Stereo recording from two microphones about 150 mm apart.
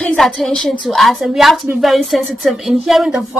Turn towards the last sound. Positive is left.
turn(degrees=0)  # may be behind; listen again after turning